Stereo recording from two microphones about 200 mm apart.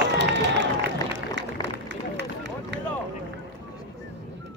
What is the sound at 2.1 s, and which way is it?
Run, 60° right (ahead or behind).